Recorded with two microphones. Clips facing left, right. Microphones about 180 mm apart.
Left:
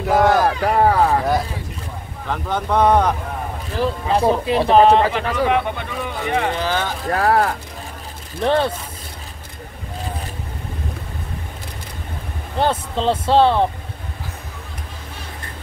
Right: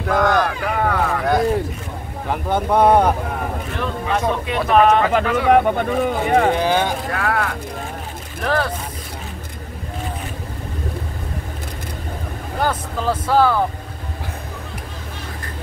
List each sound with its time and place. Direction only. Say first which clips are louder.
0.0 s speech: left 2 dB; 5° left (ahead or behind)
0.5 s a sound: left 5 dB; 35° left (ahead or behind)
2.2 s speech: right 3 dB; 15° right (ahead or behind)
3.7 s speech: left 5 dB; 30° left (ahead or behind)
5.5 s speech: right 6 dB; 45° right (ahead or behind)
6.5 s speech: right 4 dB; 15° right (ahead or behind)
7.1 s speech: left 5 dB; 35° left (ahead or behind)
12.5 s speech: left 2 dB; 25° left (ahead or behind)